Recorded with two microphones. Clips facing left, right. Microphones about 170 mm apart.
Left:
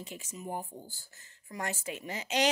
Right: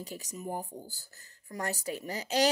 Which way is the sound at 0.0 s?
40° right (ahead or behind).